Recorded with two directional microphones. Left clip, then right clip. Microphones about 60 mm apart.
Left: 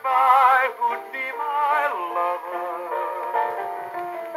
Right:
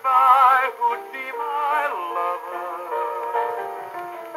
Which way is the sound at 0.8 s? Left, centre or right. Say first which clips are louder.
Right 2 dB; left.